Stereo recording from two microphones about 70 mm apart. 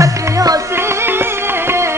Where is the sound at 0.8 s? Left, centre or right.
Right.